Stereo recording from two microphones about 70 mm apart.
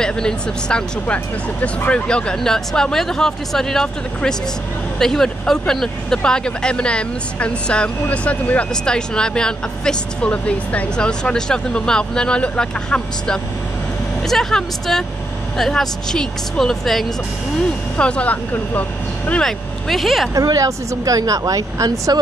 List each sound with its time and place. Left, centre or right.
0.0 s speech: centre
17.9 s speech: centre
19.4 s speech: centre
20.3 s speech: right